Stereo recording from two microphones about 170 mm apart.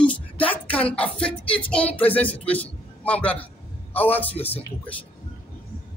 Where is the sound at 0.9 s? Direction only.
5° left (ahead or behind).